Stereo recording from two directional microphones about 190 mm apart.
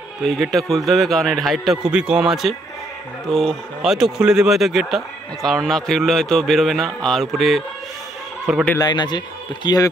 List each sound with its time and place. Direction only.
0.2 s speech: centre (ahead or behind)
8.6 s a man's voice: 20° left (ahead or behind)